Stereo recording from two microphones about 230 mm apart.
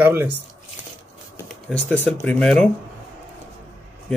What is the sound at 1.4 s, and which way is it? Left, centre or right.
Speech, centre.